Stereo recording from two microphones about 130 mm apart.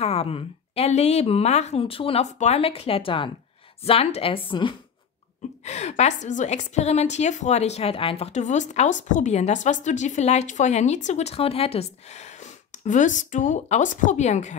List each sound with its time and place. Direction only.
0.0 s a woman's voice: 50° left (ahead or behind)
2.3 s a woman's voice: 55° left (ahead or behind); by 4.7 s 40° left (ahead or behind)
5.6 s a woman's voice: 60° left (ahead or behind)